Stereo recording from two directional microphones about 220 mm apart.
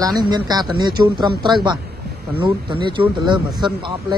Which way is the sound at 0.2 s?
20° right (ahead or behind).